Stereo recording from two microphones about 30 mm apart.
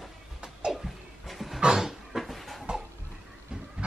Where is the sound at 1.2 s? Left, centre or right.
Centre.